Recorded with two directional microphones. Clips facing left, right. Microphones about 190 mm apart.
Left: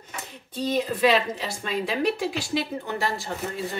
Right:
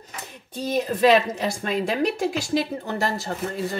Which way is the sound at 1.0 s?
45° right (ahead or behind).